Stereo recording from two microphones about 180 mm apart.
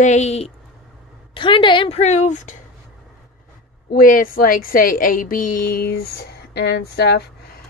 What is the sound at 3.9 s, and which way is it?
A woman's voice, 50° left (ahead or behind).